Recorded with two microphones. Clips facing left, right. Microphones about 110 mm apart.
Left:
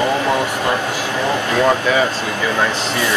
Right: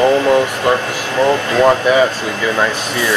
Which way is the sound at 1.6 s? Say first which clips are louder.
Right 5 dB; 20° right (ahead or behind).